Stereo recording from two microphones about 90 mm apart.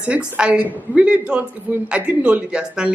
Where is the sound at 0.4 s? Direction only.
10° right (ahead or behind).